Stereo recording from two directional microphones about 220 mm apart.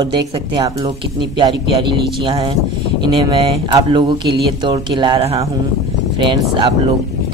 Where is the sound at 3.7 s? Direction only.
20° right (ahead or behind).